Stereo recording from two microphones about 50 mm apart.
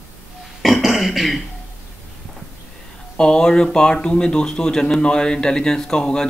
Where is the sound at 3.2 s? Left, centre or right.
Centre.